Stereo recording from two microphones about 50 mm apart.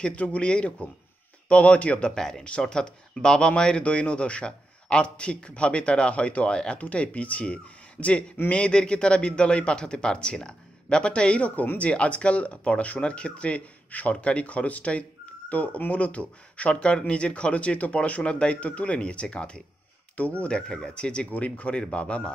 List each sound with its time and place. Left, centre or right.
0.0 s speech: left